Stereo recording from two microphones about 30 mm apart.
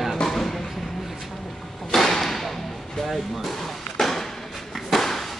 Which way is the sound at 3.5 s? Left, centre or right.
Centre.